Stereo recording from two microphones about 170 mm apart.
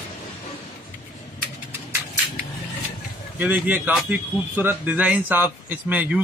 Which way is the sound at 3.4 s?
10° right (ahead or behind).